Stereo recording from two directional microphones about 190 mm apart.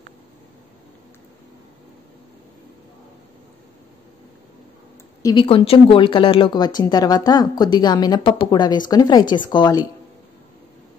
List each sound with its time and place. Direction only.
5.2 s a woman's voice: 25° left (ahead or behind)